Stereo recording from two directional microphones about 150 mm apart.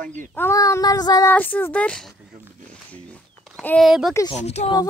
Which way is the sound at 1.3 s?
10° left (ahead or behind).